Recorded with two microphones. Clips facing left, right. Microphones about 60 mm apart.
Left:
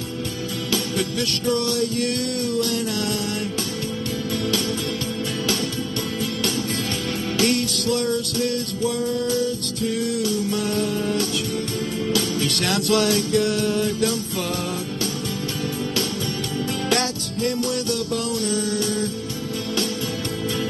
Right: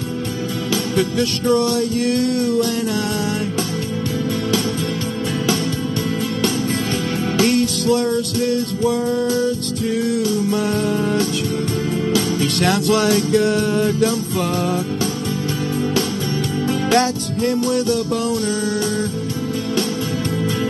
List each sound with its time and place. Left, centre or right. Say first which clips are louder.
0.9 s music: right 6 dB; right
7.3 s music: right 5 dB; right
12.1 s music: right 3 dB; right
16.9 s music: right 7 dB; right